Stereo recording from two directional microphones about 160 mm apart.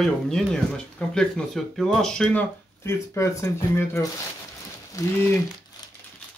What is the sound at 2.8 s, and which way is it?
Speech, 15° left (ahead or behind).